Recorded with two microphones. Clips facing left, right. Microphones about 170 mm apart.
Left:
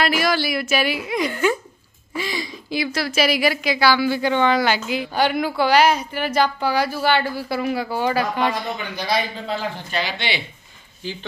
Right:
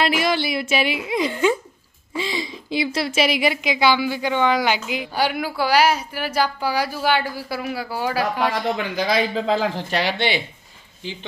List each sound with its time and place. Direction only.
0.0 s a woman's voice: 25° right (ahead or behind); by 8.5 s 5° right (ahead or behind)
9.3 s speech: 90° right; by 10.4 s 50° right (ahead or behind)
11.0 s a woman's voice: 20° right (ahead or behind)